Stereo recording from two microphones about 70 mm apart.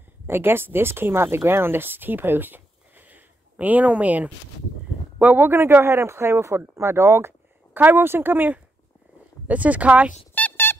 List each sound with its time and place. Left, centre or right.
0.3 s speech: right
5.7 s speech: right; by 10.1 s centre
10.3 s a sound: left